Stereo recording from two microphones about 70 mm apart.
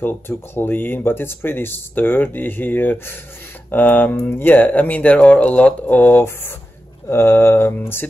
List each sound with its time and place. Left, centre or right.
0.6 s speech: left
7.1 s mantra: left